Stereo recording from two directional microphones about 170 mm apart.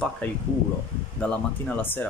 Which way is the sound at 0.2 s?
5° left (ahead or behind).